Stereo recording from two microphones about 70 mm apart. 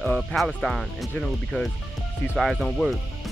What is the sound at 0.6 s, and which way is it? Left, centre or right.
Speech, centre.